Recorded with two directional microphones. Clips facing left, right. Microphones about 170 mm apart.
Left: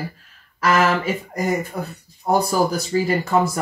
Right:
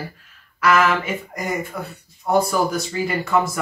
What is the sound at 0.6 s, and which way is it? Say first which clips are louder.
Speech: even; 35° left (ahead or behind).